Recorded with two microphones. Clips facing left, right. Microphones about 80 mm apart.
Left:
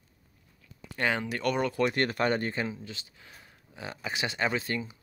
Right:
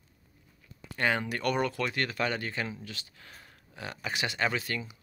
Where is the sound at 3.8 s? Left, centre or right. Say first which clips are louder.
Even; left.